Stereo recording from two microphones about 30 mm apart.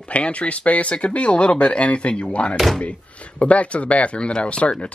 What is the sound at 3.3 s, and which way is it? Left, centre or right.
Speech, left.